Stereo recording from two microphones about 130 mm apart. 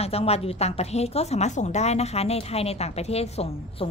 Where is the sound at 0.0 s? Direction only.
50° left (ahead or behind).